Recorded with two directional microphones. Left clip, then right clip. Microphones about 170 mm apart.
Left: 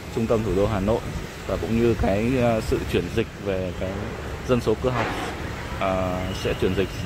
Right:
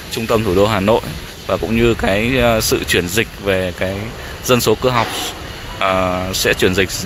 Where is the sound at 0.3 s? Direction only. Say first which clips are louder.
Right 9 dB; 20° right (ahead or behind).